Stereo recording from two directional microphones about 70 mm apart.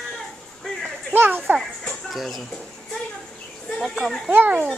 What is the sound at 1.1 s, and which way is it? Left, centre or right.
Speech, right.